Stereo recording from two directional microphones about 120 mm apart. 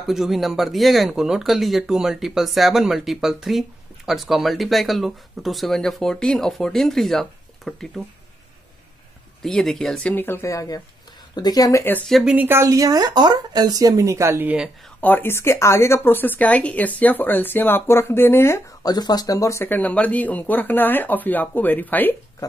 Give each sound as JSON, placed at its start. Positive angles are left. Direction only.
{"t": 0.0, "sound": "speech", "side_deg": 0}
{"t": 9.4, "sound": "speech", "side_deg": 5}
{"t": 10.1, "sound": "speech", "side_deg": 20}
{"t": 12.1, "sound": "speech", "side_deg": 0}
{"t": 12.4, "sound": "speech", "side_deg": -20}
{"t": 15.0, "sound": "a woman's voice", "side_deg": 15}
{"t": 18.8, "sound": "a woman's voice", "side_deg": 35}
{"t": 22.4, "sound": "speech", "side_deg": 30}